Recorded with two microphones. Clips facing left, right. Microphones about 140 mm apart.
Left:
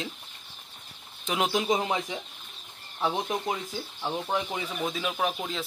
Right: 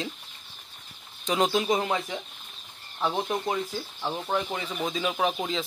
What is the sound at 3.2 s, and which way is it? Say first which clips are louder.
Speech: right 2 dB; 10° left (ahead or behind).